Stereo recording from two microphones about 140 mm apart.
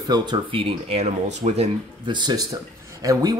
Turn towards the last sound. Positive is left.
turn(degrees=-25)  # may be behind; listen again after turning